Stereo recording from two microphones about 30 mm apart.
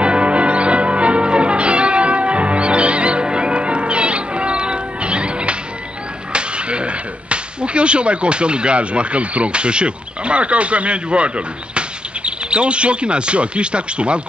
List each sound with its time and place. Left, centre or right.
0.0 s music: right
6.3 s speech: right